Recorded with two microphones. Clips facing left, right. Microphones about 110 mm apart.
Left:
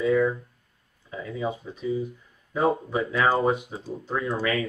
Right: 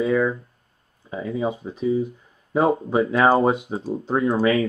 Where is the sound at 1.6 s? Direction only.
40° right (ahead or behind).